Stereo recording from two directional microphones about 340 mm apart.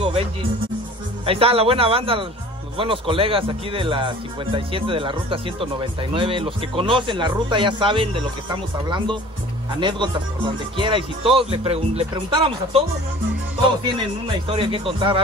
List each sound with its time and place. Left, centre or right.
0.0 s music: centre
1.2 s speech: centre
14.2 s speech: centre